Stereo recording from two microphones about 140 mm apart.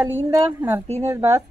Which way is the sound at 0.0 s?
15° right (ahead or behind).